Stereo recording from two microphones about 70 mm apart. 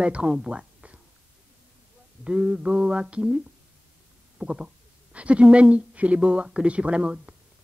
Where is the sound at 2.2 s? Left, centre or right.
Centre.